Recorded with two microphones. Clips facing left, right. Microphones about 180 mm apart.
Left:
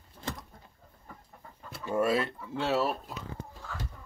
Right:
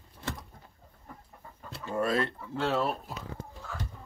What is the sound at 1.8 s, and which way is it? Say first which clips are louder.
Speech: left 1 dB; 10° left (ahead or behind).